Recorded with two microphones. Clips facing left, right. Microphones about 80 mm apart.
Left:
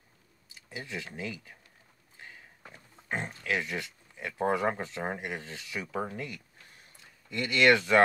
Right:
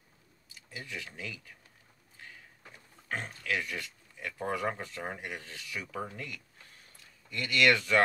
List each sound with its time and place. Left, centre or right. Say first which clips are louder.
0.5 s speech: left 3 dB; left